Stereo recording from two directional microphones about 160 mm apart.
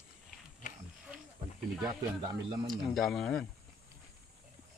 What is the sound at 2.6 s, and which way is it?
Speech, centre (ahead or behind).